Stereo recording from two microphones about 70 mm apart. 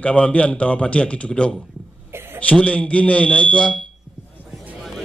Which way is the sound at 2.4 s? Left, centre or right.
Centre.